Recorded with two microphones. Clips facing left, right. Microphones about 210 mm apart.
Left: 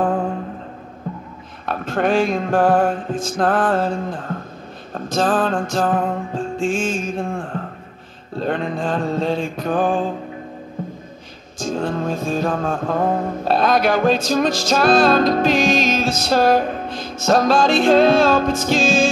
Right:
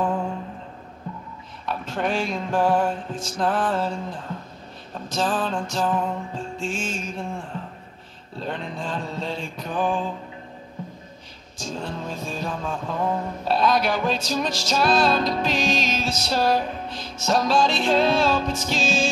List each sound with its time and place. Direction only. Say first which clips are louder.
0.0 s a sound: left 5 dB; 50° left (ahead or behind)
1.7 s music: left 7 dB; 50° left (ahead or behind)
7.2 s speech: left 6 dB; 85° left
8.4 s music: left 8 dB; 50° left (ahead or behind)
11.5 s music: left 9 dB; 50° left (ahead or behind)